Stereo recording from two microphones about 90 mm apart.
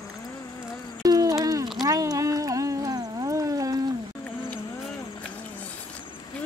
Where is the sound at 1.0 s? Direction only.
45° right (ahead or behind).